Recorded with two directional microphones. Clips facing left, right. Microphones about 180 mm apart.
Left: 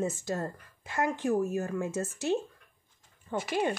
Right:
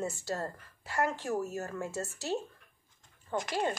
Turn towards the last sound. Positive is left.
turn(degrees=5)  # may be behind; listen again after turning